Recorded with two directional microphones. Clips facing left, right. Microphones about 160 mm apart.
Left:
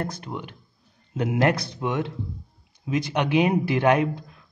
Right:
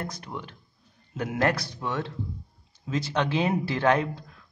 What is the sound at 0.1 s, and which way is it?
A man's voice, 20° left (ahead or behind).